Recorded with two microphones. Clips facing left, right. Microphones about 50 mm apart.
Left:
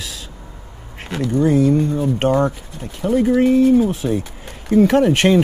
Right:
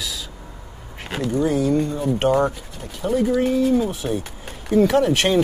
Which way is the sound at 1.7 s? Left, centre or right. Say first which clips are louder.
Left 4 dB; left.